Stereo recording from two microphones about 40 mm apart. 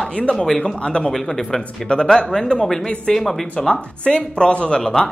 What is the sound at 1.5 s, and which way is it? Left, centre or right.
Speech, left.